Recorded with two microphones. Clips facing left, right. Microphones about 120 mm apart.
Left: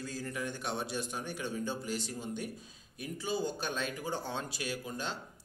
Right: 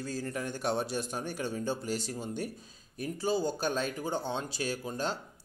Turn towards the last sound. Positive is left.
turn(degrees=-35)  # may be behind; listen again after turning